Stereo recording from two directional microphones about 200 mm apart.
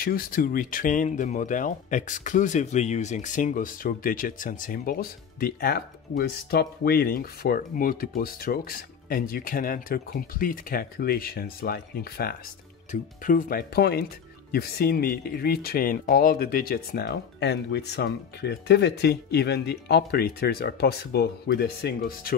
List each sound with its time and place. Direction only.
0.0 s speech: 45° left (ahead or behind)